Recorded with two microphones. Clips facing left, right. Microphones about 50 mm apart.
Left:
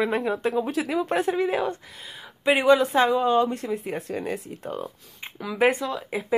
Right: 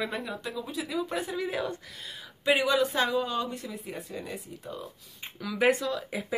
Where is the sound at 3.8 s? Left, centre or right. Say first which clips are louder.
Left 8 dB; left.